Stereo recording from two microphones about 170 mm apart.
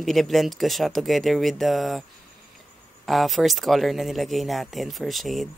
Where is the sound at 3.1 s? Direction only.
Centre (ahead or behind).